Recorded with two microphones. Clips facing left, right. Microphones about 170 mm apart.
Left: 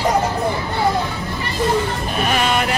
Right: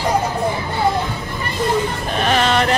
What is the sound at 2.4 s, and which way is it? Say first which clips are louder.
Vehicle: right 3 dB; 10° left (ahead or behind).